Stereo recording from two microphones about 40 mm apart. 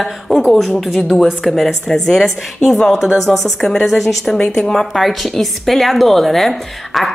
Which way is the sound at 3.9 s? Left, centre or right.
Centre.